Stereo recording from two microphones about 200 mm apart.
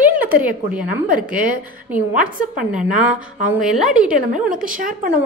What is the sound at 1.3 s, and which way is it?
A woman's voice, 45° right (ahead or behind).